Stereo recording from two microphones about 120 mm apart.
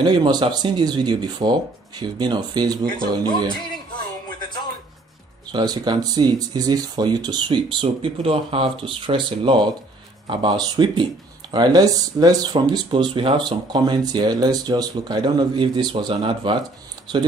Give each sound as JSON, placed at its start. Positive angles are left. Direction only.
{"t": 0.0, "sound": "speech", "side_deg": -35}
{"t": 5.5, "sound": "speech", "side_deg": -40}